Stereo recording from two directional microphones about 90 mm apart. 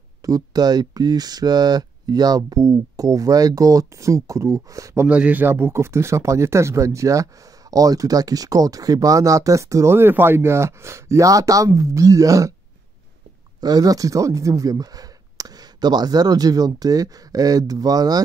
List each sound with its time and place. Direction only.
0.2 s speech: 45° right (ahead or behind)
5.0 s speech: 15° right (ahead or behind); by 12.5 s 40° right (ahead or behind)
13.6 s speech: 45° right (ahead or behind)